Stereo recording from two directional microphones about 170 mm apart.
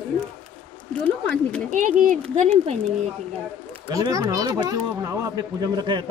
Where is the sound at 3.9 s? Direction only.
20° right (ahead or behind).